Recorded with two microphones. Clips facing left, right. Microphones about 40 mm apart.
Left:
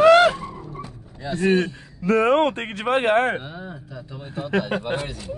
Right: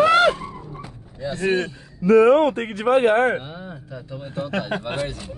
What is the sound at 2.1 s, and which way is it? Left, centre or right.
Speech, left.